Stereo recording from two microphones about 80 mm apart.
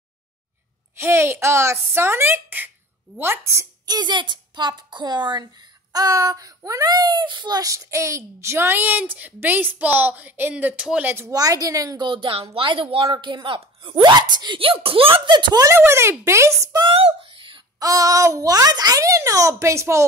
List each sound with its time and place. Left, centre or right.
0.9 s a child's voice: right
3.8 s a woman's voice: right
5.9 s a child's voice: right; by 11.1 s centre
11.3 s a child's voice: right
12.0 s a woman's voice: right
15.6 s a child's voice: right
16.8 s a sound: right
17.7 s a child's voice: right